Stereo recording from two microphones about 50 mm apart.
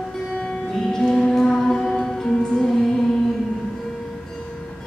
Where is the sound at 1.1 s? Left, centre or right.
Centre.